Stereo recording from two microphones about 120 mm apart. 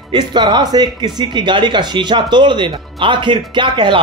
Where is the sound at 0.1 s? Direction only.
40° right (ahead or behind).